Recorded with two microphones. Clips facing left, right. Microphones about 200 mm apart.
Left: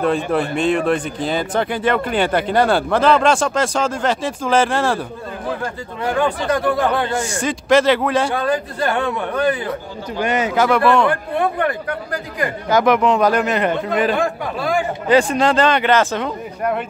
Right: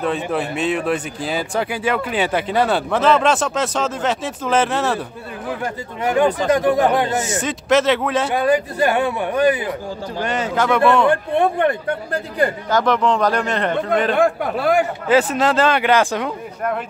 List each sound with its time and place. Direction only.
0.0 s speech: centre (ahead or behind)
5.6 s a man's voice: 20° right (ahead or behind)
7.2 s speech: 5° right (ahead or behind)
8.4 s a man's voice: 15° right (ahead or behind)
10.2 s speech: 10° left (ahead or behind)
11.1 s speech: 25° right (ahead or behind)
12.6 s speech: 10° left (ahead or behind)
14.1 s speech: 60° right (ahead or behind)
15.0 s a man's voice: 5° right (ahead or behind)